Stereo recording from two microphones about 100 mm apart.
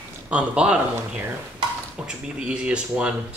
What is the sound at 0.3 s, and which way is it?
Speech, 10° right (ahead or behind).